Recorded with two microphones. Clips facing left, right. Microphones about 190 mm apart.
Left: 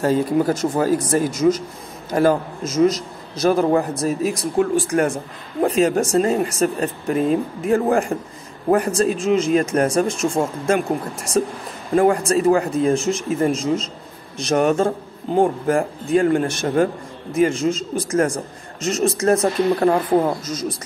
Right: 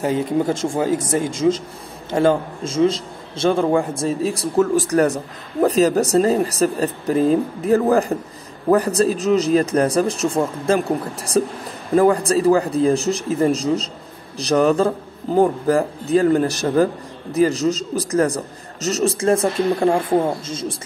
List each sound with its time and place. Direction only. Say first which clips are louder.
0.0 s a man's voice: left 2 dB; 20° right (ahead or behind)